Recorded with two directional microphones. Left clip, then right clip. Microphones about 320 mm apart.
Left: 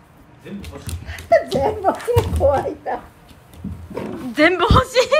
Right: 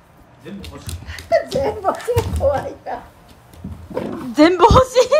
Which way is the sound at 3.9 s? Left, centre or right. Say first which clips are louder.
Right 3 dB; centre.